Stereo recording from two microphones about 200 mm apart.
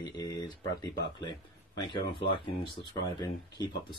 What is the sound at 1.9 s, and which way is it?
Speech, 25° left (ahead or behind).